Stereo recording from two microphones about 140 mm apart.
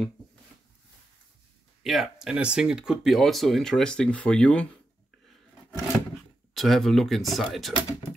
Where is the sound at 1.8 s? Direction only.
Centre (ahead or behind).